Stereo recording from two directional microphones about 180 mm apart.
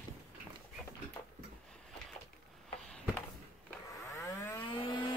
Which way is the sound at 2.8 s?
5° left (ahead or behind).